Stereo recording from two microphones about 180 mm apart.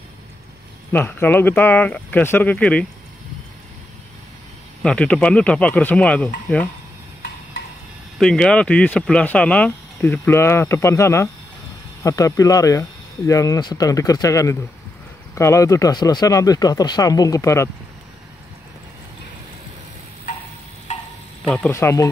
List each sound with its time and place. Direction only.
0.9 s speech: 10° left (ahead or behind)
4.8 s speech: 5° left (ahead or behind)
8.2 s speech: 5° left (ahead or behind)
21.5 s speech: 10° left (ahead or behind)